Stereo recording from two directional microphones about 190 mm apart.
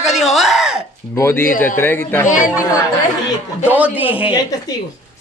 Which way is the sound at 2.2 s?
40° left (ahead or behind).